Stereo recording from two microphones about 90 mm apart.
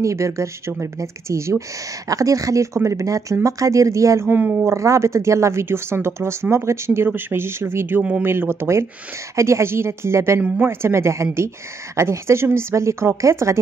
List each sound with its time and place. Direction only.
0.0 s speech: 35° right (ahead or behind)
4.3 s speech: 15° right (ahead or behind)
4.6 s speech: 35° right (ahead or behind)